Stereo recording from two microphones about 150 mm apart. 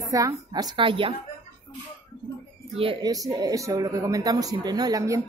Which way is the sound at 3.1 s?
25° right (ahead or behind).